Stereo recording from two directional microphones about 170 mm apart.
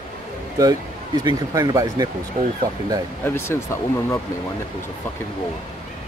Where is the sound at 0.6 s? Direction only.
20° right (ahead or behind).